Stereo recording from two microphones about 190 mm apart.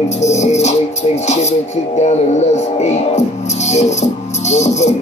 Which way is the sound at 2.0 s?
35° left (ahead or behind).